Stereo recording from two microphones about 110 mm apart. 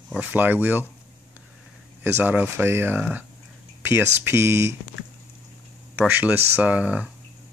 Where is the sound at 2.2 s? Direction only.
20° right (ahead or behind).